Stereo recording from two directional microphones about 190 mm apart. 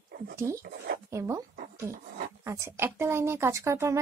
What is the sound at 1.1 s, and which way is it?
Speech, 15° right (ahead or behind).